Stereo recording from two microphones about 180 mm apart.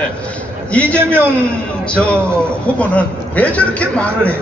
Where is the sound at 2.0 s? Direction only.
5° left (ahead or behind).